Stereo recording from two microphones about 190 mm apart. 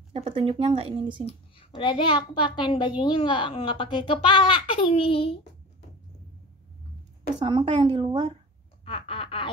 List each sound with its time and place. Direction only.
0.1 s speech: 30° right (ahead or behind)
1.2 s a child's voice: 25° left (ahead or behind)
7.4 s speech: 25° right (ahead or behind)
8.8 s quack: 30° left (ahead or behind)